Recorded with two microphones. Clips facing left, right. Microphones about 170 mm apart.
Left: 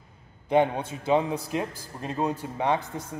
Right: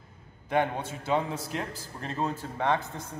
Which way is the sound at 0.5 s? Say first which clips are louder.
Left 5 dB; 15° left (ahead or behind).